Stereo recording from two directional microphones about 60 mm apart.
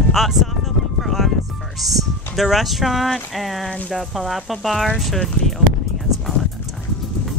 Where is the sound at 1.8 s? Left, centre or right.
Centre.